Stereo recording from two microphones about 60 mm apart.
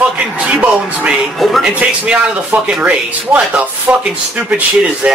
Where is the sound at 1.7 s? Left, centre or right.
Right.